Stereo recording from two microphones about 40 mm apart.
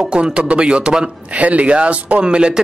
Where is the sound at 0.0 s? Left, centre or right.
Right.